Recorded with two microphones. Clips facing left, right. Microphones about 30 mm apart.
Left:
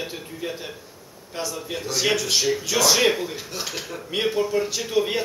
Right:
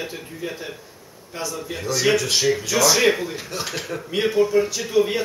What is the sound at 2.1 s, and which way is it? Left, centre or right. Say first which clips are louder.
Speech: right 3 dB; centre.